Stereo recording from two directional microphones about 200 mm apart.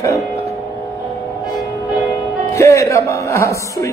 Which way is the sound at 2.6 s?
15° left (ahead or behind).